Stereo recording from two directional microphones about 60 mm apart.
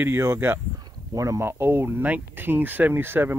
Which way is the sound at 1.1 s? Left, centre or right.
Right.